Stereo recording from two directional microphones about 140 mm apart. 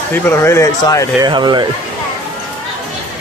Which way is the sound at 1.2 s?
30° right (ahead or behind).